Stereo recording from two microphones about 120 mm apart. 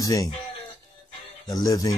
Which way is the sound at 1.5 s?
30° left (ahead or behind).